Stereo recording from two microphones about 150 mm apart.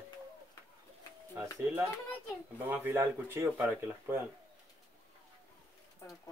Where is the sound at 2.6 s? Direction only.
15° right (ahead or behind).